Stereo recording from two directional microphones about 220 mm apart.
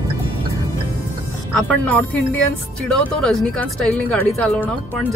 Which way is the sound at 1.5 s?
5° left (ahead or behind).